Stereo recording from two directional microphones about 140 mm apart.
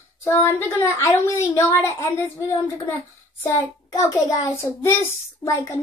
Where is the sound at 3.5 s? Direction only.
20° left (ahead or behind).